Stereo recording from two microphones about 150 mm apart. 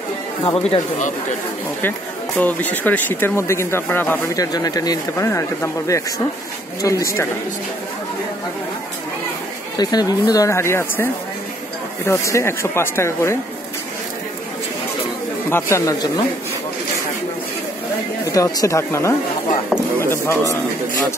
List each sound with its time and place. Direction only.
0.6 s speech: 45° left (ahead or behind)
1.8 s speech: 10° left (ahead or behind)
4.4 s speech: 25° left (ahead or behind)
9.8 s speech: 25° left (ahead or behind)
12.1 s speech: 20° left (ahead or behind)
15.5 s speech: 20° left (ahead or behind)
18.3 s speech: 20° left (ahead or behind)